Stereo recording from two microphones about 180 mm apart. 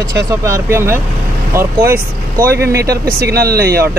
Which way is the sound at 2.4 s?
60° right (ahead or behind).